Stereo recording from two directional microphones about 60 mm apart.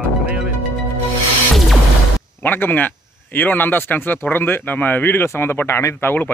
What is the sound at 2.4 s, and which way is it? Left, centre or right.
Speech, left.